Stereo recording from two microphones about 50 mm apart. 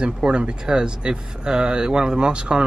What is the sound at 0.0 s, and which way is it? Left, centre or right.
Speech, centre.